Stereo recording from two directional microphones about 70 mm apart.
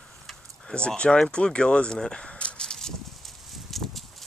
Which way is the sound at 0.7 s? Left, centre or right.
Centre.